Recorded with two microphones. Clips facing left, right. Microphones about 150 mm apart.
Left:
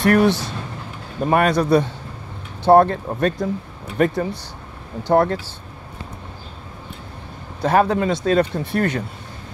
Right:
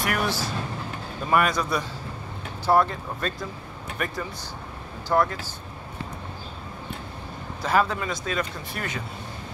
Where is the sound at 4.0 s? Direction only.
30° left (ahead or behind).